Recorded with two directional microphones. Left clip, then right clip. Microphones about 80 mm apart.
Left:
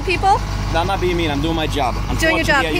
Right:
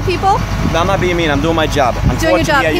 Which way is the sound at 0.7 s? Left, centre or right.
Right.